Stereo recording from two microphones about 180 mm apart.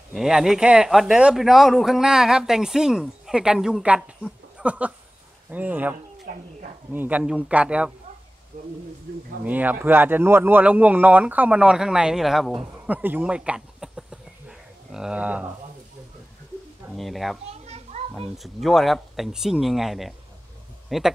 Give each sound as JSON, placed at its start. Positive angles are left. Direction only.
{"t": 0.1, "sound": "speech", "side_deg": 0}
{"t": 6.3, "sound": "speech", "side_deg": -50}
{"t": 6.9, "sound": "speech", "side_deg": -10}
{"t": 9.4, "sound": "speech", "side_deg": -10}
{"t": 12.8, "sound": "a sound", "side_deg": -10}
{"t": 14.9, "sound": "speech", "side_deg": -5}
{"t": 16.9, "sound": "speech", "side_deg": 0}
{"t": 17.5, "sound": "children playing", "side_deg": -35}
{"t": 18.3, "sound": "speech", "side_deg": 0}